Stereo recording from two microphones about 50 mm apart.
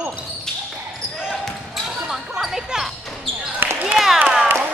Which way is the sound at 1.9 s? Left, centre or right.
Centre.